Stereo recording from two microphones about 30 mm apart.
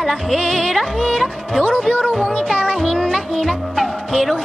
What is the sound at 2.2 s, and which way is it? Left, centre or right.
Music, left.